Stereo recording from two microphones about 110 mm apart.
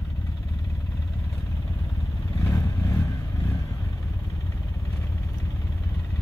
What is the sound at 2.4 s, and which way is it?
Vehicle, 30° left (ahead or behind).